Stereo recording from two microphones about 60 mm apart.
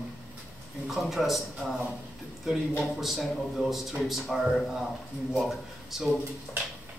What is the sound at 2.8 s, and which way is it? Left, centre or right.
A man's voice, centre.